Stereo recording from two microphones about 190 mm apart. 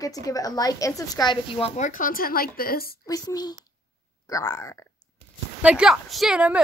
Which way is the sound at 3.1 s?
20° left (ahead or behind).